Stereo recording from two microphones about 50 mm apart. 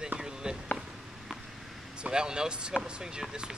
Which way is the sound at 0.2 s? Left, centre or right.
Centre.